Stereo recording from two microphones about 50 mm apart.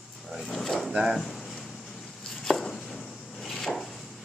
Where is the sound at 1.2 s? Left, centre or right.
Centre.